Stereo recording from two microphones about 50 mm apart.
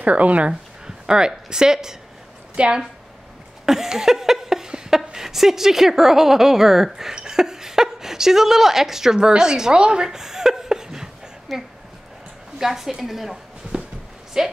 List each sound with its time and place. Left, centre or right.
0.0 s speech: right
0.8 s a woman's voice: centre
3.6 s speech: centre
11.5 s a woman's voice: centre